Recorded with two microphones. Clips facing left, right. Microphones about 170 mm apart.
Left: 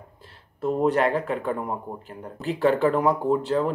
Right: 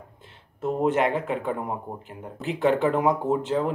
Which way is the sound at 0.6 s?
20° right (ahead or behind).